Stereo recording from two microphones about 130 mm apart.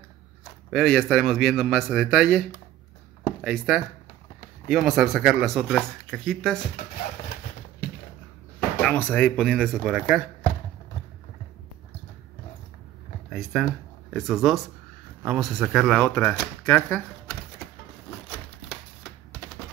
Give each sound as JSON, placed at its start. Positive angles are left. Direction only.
{"t": 0.7, "sound": "speech", "side_deg": 0}
{"t": 3.4, "sound": "speech", "side_deg": -5}
{"t": 8.8, "sound": "speech", "side_deg": 10}
{"t": 9.6, "sound": "speech", "side_deg": -5}
{"t": 13.3, "sound": "speech", "side_deg": -5}
{"t": 16.0, "sound": "speech", "side_deg": 15}